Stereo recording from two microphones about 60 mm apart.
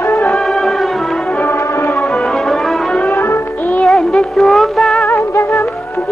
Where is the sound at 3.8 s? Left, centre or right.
Centre.